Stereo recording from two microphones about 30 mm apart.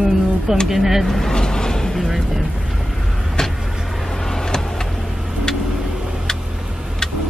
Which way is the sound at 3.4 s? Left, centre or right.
Left.